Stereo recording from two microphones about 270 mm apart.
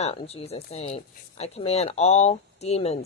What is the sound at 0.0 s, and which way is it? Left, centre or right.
Speech, left.